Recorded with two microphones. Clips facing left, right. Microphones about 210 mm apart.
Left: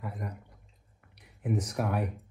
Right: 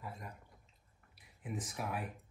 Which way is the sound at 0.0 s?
60° left (ahead or behind).